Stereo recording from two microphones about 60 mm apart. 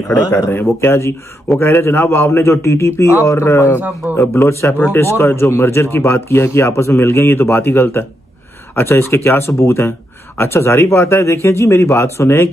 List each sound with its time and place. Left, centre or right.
0.7 s speech: left